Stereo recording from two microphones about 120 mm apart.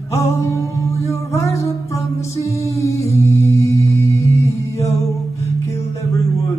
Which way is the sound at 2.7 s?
25° left (ahead or behind).